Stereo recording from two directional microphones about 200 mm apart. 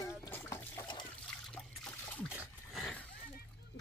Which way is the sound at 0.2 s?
15° left (ahead or behind).